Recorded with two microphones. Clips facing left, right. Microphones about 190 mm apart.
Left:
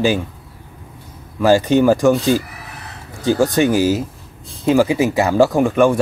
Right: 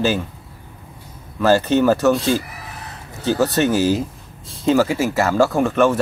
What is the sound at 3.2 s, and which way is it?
Speech, 15° left (ahead or behind).